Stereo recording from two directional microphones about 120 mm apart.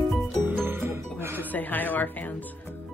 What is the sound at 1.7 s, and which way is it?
Music, 15° left (ahead or behind).